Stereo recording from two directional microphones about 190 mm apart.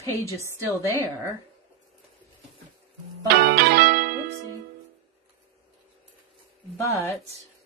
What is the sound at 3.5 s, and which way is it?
Music, 55° right (ahead or behind).